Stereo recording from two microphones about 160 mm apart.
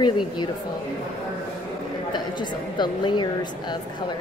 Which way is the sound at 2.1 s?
30° left (ahead or behind).